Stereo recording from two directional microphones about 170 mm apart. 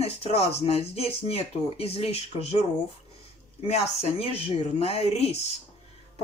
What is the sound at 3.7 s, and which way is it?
Speech, 35° left (ahead or behind).